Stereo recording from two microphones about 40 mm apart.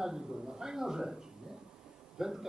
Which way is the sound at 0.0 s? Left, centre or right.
Centre.